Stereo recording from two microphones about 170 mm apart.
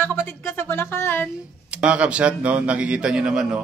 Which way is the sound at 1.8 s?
5° right (ahead or behind).